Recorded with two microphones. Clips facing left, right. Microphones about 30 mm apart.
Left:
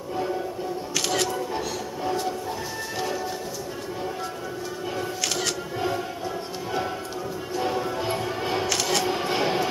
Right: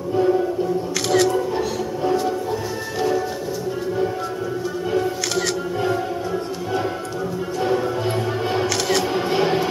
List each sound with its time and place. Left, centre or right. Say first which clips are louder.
0.1 s music: right 10 dB; centre
1.0 s music: right 8 dB; right
1.3 s music: right 7 dB; centre
7.6 s music: right 6 dB; centre
9.0 s camera: right 4 dB; centre